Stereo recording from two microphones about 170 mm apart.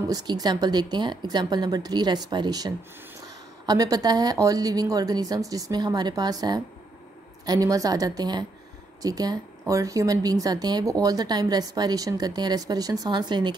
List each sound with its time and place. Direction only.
0.1 s a woman's voice: 25° right (ahead or behind)